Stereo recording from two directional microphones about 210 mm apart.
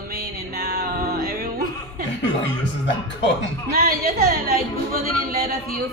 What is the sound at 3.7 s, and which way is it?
Speech, 45° right (ahead or behind).